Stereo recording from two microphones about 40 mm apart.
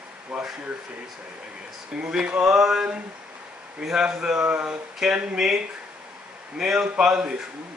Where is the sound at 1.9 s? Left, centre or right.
Right.